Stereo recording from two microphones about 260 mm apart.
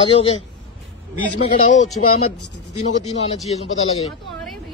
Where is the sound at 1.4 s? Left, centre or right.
Left.